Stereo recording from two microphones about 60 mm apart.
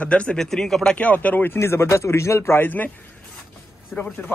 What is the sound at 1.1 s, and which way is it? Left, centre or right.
Speech, left.